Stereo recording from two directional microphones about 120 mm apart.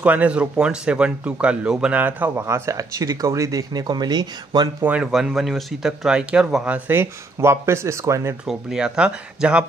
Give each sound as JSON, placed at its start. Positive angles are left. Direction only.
{"t": 0.0, "sound": "speech", "side_deg": -10}
{"t": 4.8, "sound": "speech", "side_deg": -10}
{"t": 8.5, "sound": "speech", "side_deg": -5}